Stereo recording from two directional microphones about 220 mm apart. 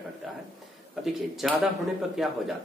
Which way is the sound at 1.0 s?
Centre (ahead or behind).